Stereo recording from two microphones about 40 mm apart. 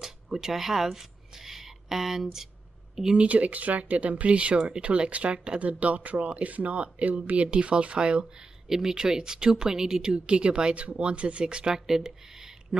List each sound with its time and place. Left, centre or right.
0.0 s a sound: centre
3.2 s speech: right
5.6 s speech: right
8.6 s speech: centre